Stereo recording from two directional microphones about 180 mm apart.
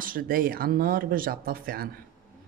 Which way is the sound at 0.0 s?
50° right (ahead or behind).